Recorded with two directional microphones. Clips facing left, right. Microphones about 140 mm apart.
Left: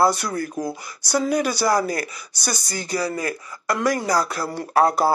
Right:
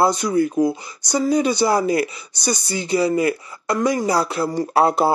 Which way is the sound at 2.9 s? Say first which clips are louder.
Right 7 dB; 25° right (ahead or behind).